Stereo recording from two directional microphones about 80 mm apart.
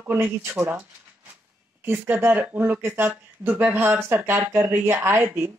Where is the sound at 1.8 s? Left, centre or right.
Right.